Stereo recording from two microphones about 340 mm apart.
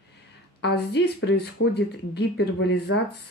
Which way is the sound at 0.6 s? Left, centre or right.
Left.